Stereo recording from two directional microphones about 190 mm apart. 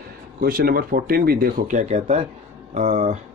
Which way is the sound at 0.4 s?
50° right (ahead or behind).